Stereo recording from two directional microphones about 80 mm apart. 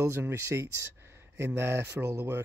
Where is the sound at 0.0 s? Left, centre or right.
Right.